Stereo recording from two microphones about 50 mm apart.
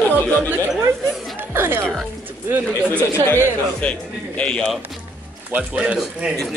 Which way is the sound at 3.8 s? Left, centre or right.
Left.